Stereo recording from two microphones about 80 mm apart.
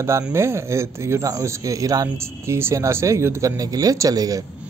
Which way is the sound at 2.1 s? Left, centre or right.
Right.